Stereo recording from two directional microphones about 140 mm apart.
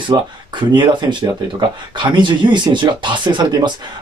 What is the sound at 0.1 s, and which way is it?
Speech, 30° right (ahead or behind).